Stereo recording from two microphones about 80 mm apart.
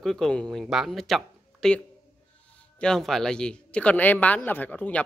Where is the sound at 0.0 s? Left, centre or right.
Centre.